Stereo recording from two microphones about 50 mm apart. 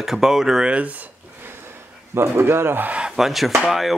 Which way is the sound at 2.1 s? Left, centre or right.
Right.